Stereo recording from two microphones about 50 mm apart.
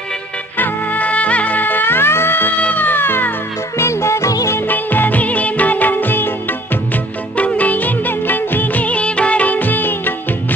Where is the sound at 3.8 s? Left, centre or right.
Left.